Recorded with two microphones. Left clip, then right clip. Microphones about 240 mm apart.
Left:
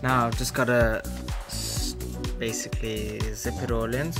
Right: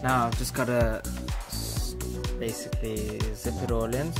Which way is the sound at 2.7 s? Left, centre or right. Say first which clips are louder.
Left 1 dB; centre.